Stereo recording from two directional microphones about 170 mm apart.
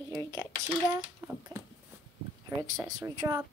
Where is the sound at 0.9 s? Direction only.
15° right (ahead or behind).